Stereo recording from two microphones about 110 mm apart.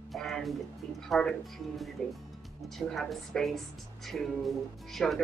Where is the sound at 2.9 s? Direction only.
5° left (ahead or behind).